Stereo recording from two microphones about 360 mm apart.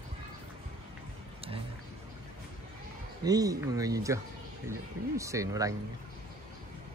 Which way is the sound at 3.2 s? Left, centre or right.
Centre.